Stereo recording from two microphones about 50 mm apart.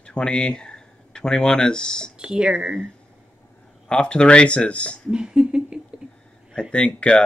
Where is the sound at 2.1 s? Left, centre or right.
Centre.